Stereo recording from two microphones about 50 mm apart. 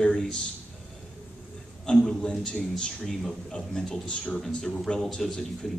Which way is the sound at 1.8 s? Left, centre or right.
Centre.